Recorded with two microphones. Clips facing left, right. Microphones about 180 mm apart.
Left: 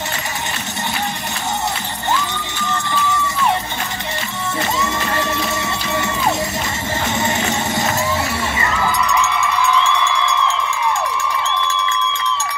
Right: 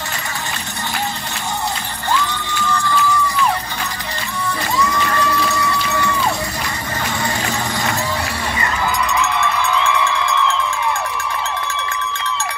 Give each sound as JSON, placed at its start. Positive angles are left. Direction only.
{"t": 2.5, "sound": "music", "side_deg": 20}
{"t": 4.7, "sound": "run", "side_deg": 25}
{"t": 7.2, "sound": "music", "side_deg": 20}